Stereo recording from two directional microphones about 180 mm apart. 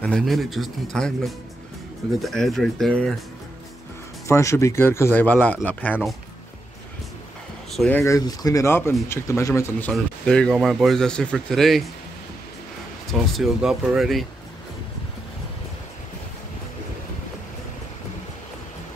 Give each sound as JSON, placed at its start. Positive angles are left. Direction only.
{"t": 0.0, "sound": "a man's voice", "side_deg": 0}
{"t": 4.3, "sound": "speech", "side_deg": 15}
{"t": 7.7, "sound": "speech", "side_deg": 5}
{"t": 8.0, "sound": "a man's voice", "side_deg": 20}
{"t": 13.1, "sound": "a man's voice", "side_deg": 0}